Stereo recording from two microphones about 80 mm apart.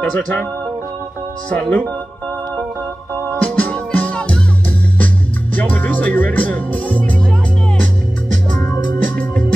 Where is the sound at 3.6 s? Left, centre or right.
Centre.